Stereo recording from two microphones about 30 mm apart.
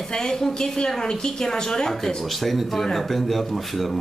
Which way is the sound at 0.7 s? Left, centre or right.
Left.